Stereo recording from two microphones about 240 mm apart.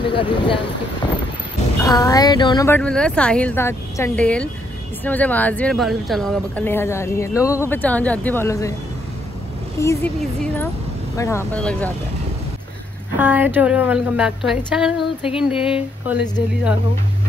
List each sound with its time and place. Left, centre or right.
0.0 s speech: left
1.8 s speech: centre
9.8 s speech: centre
13.2 s a woman's voice: centre